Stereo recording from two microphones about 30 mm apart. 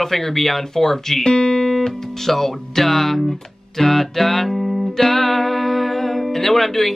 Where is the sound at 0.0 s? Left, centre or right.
Centre.